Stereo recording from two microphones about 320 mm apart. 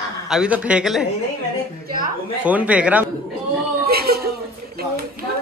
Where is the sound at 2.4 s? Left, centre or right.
Centre.